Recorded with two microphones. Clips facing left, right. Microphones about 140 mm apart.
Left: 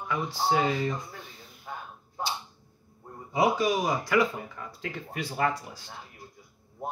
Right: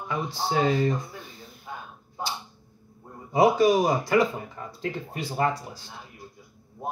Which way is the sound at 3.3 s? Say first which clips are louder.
Right 6 dB; 40° right (ahead or behind).